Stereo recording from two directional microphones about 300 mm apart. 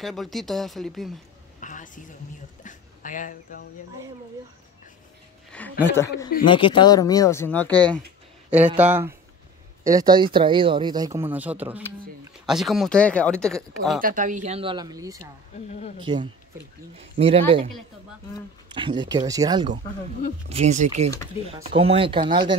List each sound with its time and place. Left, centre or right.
0.0 s speech: centre
1.6 s a sound: left
2.6 s speech: left
5.5 s speech: centre
14.0 s speech: right
18.7 s speech: centre